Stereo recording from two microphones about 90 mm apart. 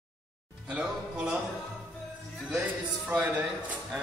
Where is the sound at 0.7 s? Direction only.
10° right (ahead or behind).